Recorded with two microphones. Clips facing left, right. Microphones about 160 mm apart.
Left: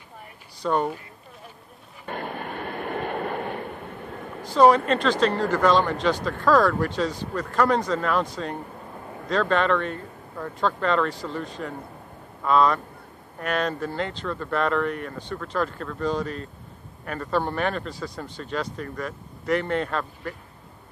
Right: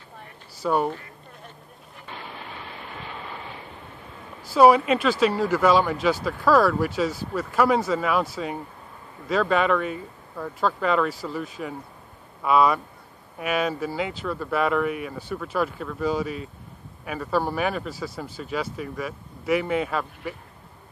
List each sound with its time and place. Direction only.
0.6 s speech: 5° right (ahead or behind)
2.0 s vehicle: 55° left (ahead or behind)
4.4 s speech: 5° right (ahead or behind)